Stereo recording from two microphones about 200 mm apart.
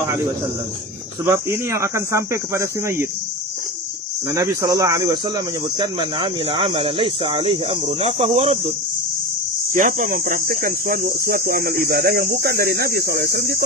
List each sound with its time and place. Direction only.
0.0 s speech: 20° right (ahead or behind)
4.3 s speech: 15° right (ahead or behind); by 13.6 s 50° right (ahead or behind)